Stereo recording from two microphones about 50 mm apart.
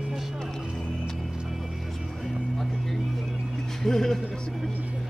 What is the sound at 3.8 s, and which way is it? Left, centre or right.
Music, centre.